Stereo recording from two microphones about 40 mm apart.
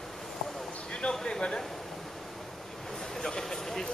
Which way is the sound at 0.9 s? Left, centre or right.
Left.